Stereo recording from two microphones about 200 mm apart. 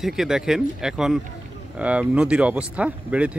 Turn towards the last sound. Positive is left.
turn(degrees=-5)  # may be behind; listen again after turning